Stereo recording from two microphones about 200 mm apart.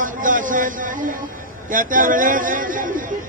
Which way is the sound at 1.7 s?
40° right (ahead or behind).